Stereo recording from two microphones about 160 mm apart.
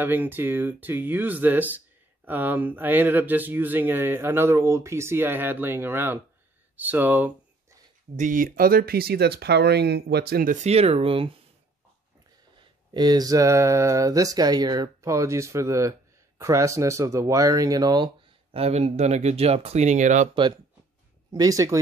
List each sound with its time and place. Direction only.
0.0 s speech: 10° right (ahead or behind)
8.2 s speech: 55° right (ahead or behind); by 11.3 s 35° right (ahead or behind)
12.9 s speech: 25° right (ahead or behind)
18.6 s speech: 40° right (ahead or behind)
21.3 s speech: 20° right (ahead or behind)